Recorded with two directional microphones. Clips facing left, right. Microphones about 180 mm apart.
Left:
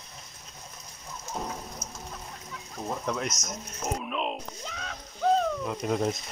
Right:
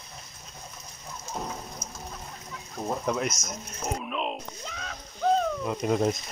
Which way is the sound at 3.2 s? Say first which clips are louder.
Right 2 dB; centre (ahead or behind).